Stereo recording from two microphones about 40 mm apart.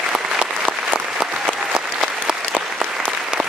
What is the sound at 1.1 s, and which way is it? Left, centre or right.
Applause, centre.